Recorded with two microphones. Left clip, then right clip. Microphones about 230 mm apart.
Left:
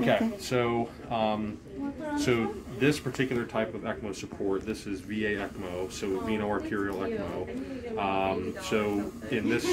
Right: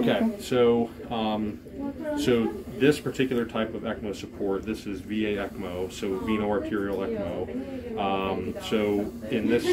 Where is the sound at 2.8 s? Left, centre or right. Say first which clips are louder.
Right 4 dB; left.